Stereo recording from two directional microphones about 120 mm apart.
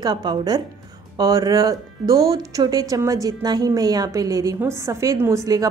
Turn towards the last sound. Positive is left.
turn(degrees=-30)  # may be behind; listen again after turning